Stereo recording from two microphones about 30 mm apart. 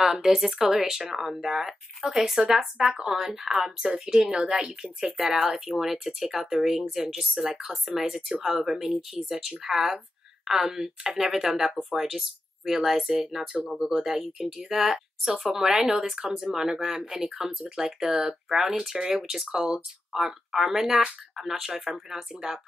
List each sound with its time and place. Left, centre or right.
0.0 s speech: centre
7.4 s speech: right
7.7 s speech: centre
18.5 s speech: centre